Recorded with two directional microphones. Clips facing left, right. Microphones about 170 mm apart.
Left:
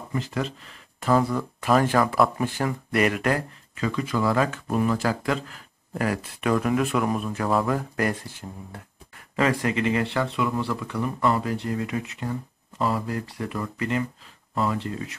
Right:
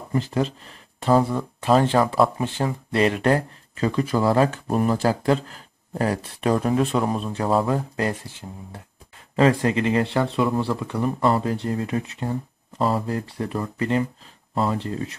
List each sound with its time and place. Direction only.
0.1 s speech: 30° right (ahead or behind)
8.4 s speech: 10° right (ahead or behind)
9.4 s speech: 30° right (ahead or behind)